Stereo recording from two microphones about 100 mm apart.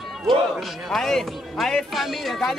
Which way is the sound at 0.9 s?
5° left (ahead or behind).